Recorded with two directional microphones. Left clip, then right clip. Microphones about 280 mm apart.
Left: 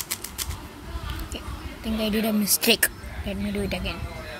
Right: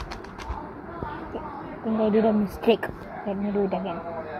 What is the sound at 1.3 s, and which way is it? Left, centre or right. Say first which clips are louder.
A woman's voice: right 4 dB; left.